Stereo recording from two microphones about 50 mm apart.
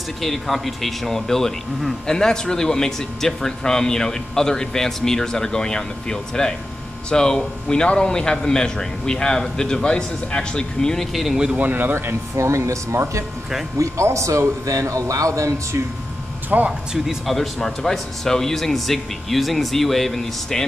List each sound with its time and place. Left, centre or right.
0.2 s a man's voice: centre
11.5 s speech: right
12.4 s a man's voice: right
16.4 s speech: right
17.3 s speech: centre